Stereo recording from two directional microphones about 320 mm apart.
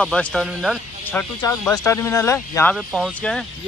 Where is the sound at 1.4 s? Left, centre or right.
Centre.